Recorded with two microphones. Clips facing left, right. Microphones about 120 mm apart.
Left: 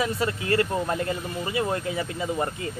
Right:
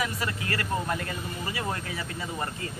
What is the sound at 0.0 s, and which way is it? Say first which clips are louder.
Speech: left 5 dB; 25° left (ahead or behind).